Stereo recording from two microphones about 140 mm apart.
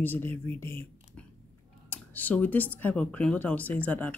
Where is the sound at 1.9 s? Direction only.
10° left (ahead or behind).